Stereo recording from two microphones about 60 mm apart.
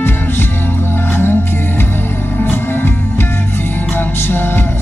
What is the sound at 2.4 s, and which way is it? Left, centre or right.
Music, left.